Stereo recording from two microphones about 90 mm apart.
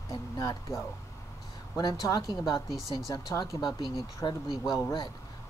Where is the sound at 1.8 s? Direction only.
50° left (ahead or behind).